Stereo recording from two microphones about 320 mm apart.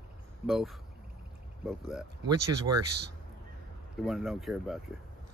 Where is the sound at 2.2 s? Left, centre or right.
Centre.